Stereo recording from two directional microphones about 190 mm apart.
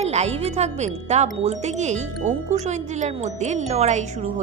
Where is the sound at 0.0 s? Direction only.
35° right (ahead or behind).